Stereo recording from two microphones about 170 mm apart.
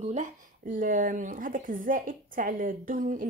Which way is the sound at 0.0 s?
45° right (ahead or behind).